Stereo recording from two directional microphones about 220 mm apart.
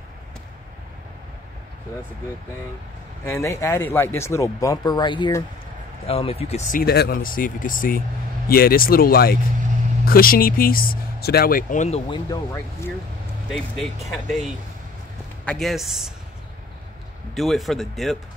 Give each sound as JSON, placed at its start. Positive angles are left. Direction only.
{"t": 3.3, "sound": "speech", "side_deg": 10}
{"t": 12.1, "sound": "speech", "side_deg": 15}
{"t": 13.5, "sound": "speech", "side_deg": 0}
{"t": 15.4, "sound": "speech", "side_deg": 0}
{"t": 17.3, "sound": "speech", "side_deg": 0}